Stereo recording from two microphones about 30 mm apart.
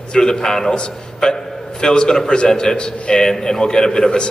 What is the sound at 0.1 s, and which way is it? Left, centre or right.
A man's voice, left.